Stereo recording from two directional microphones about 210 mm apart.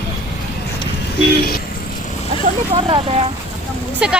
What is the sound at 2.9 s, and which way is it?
Speech, 30° right (ahead or behind).